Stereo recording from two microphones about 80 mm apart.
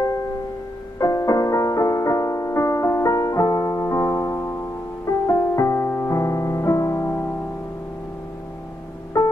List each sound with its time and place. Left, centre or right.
0.9 s music: left
9.1 s music: left